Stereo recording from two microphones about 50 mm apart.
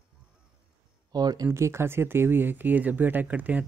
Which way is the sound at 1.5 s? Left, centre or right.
Right.